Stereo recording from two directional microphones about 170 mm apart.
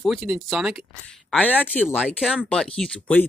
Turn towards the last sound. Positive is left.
turn(degrees=10)  # may be behind; listen again after turning